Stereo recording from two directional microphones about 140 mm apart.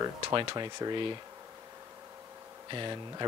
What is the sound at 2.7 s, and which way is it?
Speech, 35° right (ahead or behind).